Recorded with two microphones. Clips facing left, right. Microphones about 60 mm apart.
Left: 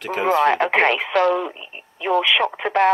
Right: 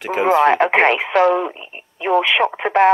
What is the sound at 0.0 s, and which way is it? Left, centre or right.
Speech, centre.